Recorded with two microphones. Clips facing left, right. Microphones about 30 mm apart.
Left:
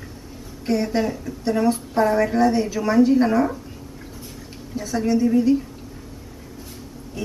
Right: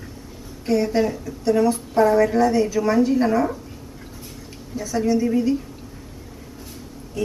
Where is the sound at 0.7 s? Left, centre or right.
Centre.